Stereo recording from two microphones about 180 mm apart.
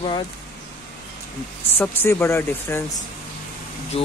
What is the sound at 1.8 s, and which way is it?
Speech, 10° left (ahead or behind).